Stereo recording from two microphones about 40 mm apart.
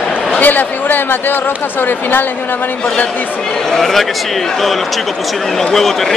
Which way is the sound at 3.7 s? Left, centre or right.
Centre.